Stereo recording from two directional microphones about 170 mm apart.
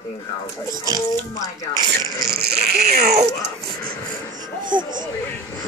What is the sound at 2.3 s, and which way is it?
Speech, 65° right (ahead or behind).